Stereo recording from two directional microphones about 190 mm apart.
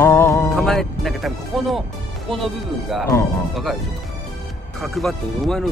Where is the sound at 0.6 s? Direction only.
Centre (ahead or behind).